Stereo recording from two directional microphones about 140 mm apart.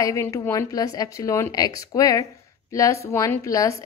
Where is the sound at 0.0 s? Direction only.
20° left (ahead or behind).